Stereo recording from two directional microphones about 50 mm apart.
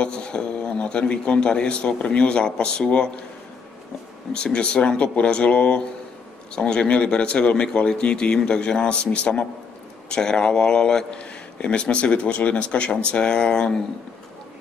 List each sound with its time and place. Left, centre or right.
0.0 s a man's voice: centre
4.3 s a man's voice: centre